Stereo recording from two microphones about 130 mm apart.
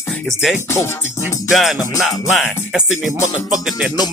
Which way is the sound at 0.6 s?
20° left (ahead or behind).